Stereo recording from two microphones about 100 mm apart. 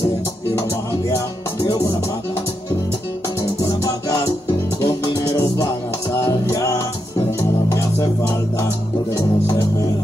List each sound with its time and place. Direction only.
1.7 s music: 30° left (ahead or behind)
3.6 s music: 35° left (ahead or behind)